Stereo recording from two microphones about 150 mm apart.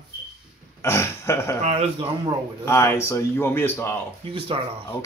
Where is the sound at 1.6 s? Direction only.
45° right (ahead or behind).